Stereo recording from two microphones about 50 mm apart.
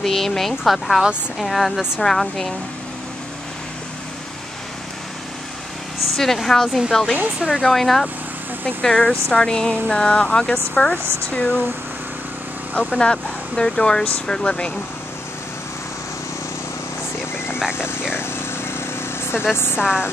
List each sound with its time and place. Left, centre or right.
0.0 s speech: centre
6.1 s speech: centre; by 11.6 s left
12.7 s speech: centre
17.7 s a sound: left
19.5 s a woman's voice: left
19.8 s a sound: centre